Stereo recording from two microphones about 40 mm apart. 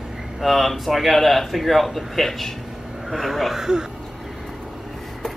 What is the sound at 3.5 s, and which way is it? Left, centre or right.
Speech, centre.